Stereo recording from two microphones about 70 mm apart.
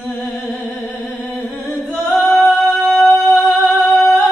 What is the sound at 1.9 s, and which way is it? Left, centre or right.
A capella, left.